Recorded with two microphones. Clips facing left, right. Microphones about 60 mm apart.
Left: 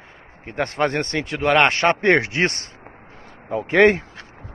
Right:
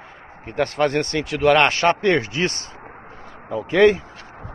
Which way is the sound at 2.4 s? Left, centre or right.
Left.